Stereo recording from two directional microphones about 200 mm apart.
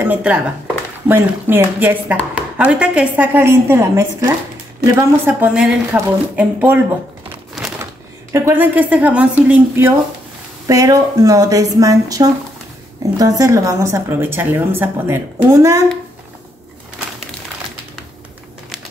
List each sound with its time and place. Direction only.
0.0 s speech: 5° right (ahead or behind)
7.8 s speech: 15° right (ahead or behind)